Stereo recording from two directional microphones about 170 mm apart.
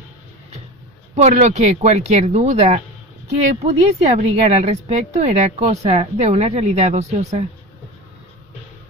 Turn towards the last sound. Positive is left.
turn(degrees=-40)  # may be behind; listen again after turning